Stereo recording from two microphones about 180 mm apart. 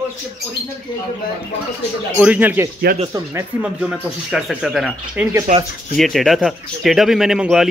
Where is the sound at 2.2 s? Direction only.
10° right (ahead or behind).